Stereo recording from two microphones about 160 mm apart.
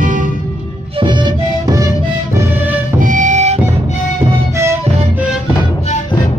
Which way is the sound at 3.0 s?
50° right (ahead or behind).